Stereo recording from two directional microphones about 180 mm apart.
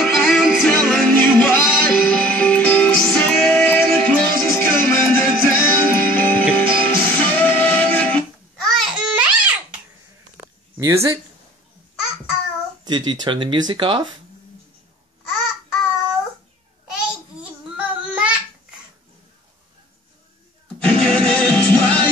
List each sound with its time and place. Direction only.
0.0 s music: centre (ahead or behind)
10.4 s a sound: 20° right (ahead or behind)
12.8 s speech: 25° right (ahead or behind)
16.9 s babbling: 5° right (ahead or behind)
20.8 s music: 5° left (ahead or behind)